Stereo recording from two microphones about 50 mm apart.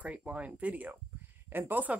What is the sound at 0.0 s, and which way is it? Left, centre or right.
Speech, right.